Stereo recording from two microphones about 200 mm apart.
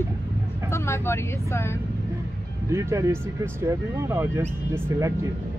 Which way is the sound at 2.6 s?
15° right (ahead or behind).